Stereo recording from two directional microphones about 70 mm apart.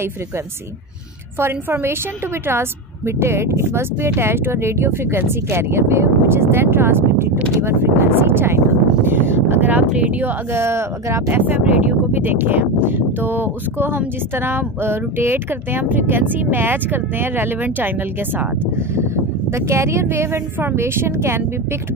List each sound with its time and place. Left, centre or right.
1.4 s speech: right
3.2 s speech: right
10.5 s speech: right
11.2 s speech: right
19.5 s speech: right